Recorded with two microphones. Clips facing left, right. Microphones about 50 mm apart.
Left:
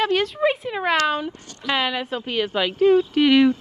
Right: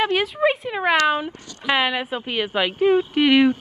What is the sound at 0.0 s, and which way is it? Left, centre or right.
A woman's voice, centre.